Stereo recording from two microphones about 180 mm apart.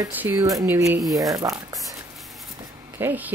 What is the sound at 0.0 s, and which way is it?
Speech, 15° right (ahead or behind).